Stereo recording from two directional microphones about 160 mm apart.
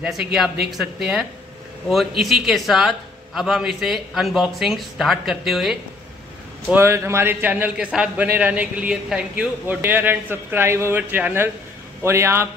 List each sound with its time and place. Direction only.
0.0 s a man's voice: 5° right (ahead or behind)
6.7 s a man's voice: 15° right (ahead or behind)